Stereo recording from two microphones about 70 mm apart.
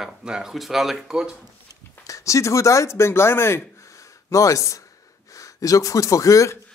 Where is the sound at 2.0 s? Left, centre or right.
Left.